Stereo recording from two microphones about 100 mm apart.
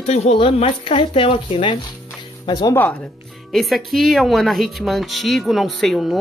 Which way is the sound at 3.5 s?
Centre (ahead or behind).